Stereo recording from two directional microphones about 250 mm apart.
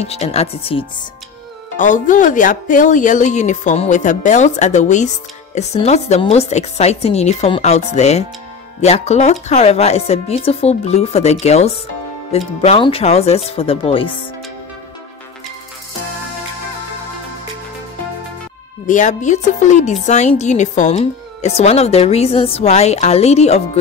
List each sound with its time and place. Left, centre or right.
0.0 s speech: left
18.9 s speech: left